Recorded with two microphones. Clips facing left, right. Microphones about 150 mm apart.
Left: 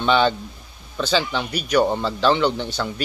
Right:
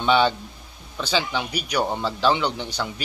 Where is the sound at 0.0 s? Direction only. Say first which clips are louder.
Left 1 dB; 10° right (ahead or behind).